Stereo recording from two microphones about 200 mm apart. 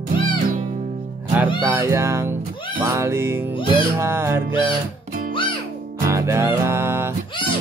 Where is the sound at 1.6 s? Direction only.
15° right (ahead or behind).